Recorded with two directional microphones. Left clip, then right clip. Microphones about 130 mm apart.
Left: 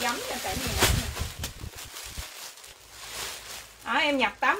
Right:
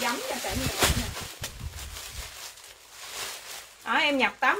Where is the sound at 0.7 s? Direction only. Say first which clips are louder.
Left 1 dB; 90° left.